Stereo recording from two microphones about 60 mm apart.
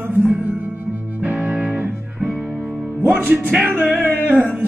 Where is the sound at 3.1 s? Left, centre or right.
Right.